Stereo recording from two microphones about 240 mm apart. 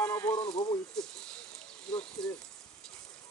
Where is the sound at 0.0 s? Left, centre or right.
Centre.